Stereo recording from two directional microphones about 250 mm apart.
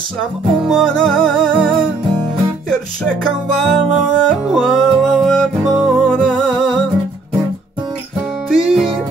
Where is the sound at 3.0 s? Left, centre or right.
Centre.